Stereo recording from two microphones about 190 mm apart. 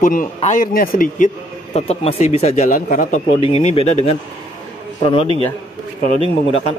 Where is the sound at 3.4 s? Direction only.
30° left (ahead or behind).